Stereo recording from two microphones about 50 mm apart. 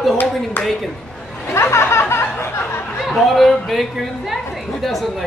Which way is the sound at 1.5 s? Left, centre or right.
Left.